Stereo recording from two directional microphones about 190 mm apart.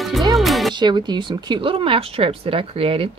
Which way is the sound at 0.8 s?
25° right (ahead or behind).